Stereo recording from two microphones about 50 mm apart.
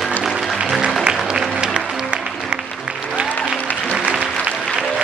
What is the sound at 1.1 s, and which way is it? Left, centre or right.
Applause, centre.